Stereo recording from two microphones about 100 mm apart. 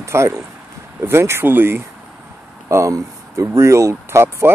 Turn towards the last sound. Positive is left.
turn(degrees=-25)  # may be behind; listen again after turning